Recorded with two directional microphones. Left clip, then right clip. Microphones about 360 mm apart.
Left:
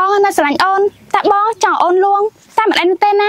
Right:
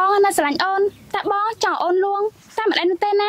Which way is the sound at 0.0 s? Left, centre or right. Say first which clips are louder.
Left 4 dB; centre.